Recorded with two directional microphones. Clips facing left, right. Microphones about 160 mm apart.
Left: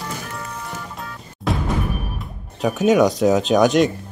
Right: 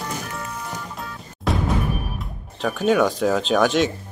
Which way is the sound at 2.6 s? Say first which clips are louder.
Left 3 dB; 5° left (ahead or behind).